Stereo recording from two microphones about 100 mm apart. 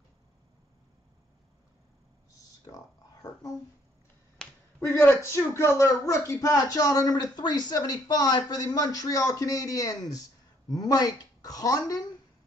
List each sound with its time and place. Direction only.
2.6 s speech: 35° left (ahead or behind)
4.4 s finger snapping: 5° left (ahead or behind)
4.7 s a woman's voice: 25° left (ahead or behind); by 12.1 s 40° left (ahead or behind)